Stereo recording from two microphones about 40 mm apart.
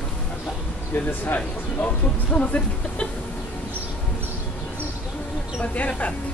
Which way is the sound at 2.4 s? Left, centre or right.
Left.